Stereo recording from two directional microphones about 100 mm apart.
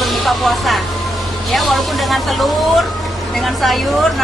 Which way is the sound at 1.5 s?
Centre (ahead or behind).